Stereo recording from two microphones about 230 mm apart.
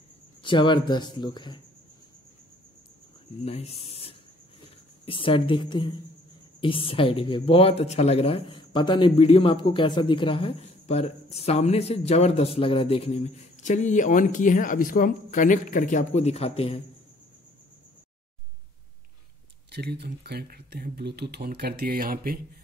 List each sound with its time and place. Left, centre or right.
0.4 s a man's voice: left
3.4 s a man's voice: left
19.7 s speech: right